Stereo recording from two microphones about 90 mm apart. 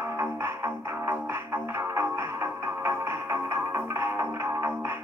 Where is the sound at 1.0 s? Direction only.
25° right (ahead or behind).